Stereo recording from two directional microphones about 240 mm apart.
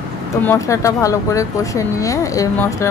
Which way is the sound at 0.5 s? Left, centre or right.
Centre.